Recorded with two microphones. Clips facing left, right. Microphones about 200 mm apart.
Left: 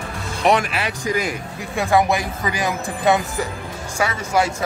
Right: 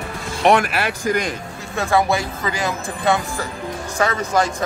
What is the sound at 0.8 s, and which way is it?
Speech, 55° right (ahead or behind).